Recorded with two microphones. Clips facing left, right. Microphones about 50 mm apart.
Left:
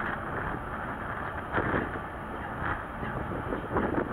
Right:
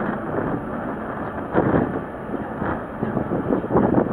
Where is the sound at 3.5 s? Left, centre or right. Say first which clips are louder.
Right 11 dB; centre.